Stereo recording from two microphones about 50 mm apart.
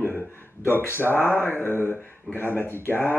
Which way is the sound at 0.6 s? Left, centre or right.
Left.